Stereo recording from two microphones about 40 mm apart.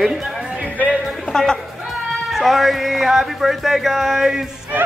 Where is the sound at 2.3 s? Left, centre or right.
Centre.